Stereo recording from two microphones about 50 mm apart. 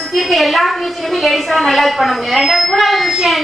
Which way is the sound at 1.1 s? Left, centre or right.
Centre.